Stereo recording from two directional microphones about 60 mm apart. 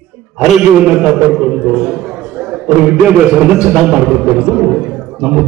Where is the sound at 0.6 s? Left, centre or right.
Centre.